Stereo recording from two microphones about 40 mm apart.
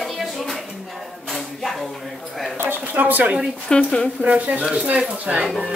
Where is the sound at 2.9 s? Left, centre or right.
Right.